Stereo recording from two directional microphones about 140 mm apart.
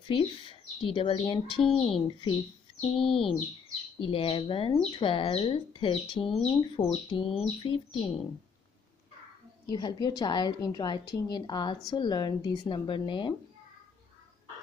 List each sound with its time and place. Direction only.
0.1 s speech: 40° left (ahead or behind)
9.7 s speech: 30° left (ahead or behind)